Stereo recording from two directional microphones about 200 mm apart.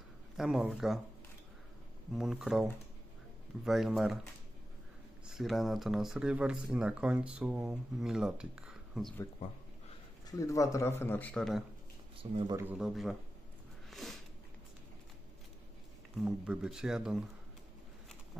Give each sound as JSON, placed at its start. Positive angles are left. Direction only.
{"t": 0.4, "sound": "speech", "side_deg": 0}
{"t": 2.1, "sound": "speech", "side_deg": 0}
{"t": 10.3, "sound": "a man's voice", "side_deg": 15}
{"t": 12.2, "sound": "speech", "side_deg": -25}
{"t": 12.5, "sound": "speech", "side_deg": -5}
{"t": 13.8, "sound": "a sound", "side_deg": 0}
{"t": 16.2, "sound": "speech", "side_deg": -5}